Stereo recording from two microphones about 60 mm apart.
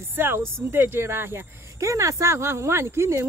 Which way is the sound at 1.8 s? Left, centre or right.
Right.